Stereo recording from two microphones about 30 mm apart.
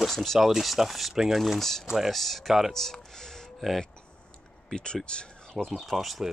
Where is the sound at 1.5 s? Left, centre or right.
Centre.